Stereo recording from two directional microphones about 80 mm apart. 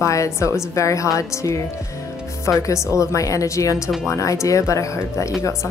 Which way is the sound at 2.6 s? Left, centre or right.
Left.